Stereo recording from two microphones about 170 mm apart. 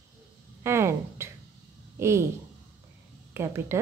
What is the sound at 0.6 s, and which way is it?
A woman's voice, 15° right (ahead or behind).